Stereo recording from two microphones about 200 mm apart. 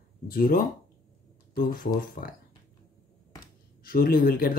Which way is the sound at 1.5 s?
45° left (ahead or behind).